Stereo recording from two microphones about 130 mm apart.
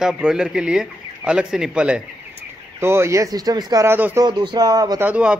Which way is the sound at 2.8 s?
20° right (ahead or behind).